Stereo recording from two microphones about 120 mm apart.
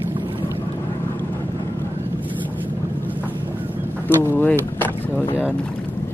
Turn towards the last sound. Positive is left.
turn(degrees=15)  # may be behind; listen again after turning